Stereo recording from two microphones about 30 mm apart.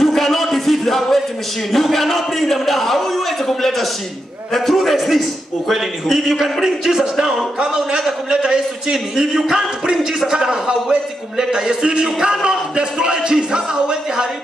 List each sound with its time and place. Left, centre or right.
0.0 s a sound: centre
1.7 s a man's voice: centre
6.4 s speech: centre
8.4 s a man's voice: right